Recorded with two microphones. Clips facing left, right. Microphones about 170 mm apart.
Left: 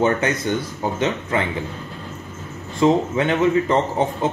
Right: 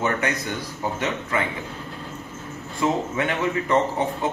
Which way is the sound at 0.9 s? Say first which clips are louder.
Left 5 dB; 25° left (ahead or behind).